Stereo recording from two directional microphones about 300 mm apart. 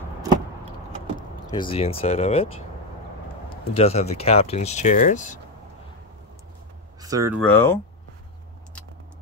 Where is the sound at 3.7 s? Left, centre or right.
Left.